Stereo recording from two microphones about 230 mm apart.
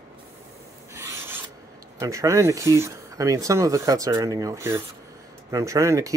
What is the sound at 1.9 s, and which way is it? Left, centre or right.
Speech, centre.